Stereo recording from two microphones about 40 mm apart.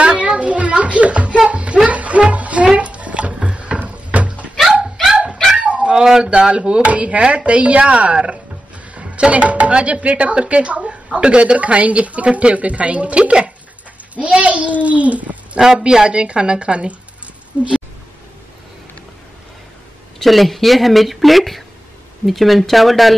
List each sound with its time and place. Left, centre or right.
0.0 s music: right
2.8 s a sound: right
3.8 s cupboard open or close: right
5.6 s dog: right
6.2 s a woman's voice: right
15.8 s a woman's voice: right
20.2 s speech: centre